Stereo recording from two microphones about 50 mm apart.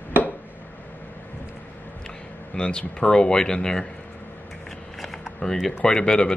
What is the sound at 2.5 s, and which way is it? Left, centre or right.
Speech, centre.